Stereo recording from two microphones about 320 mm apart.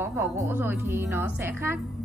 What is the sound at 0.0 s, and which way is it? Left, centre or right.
A woman's voice, centre.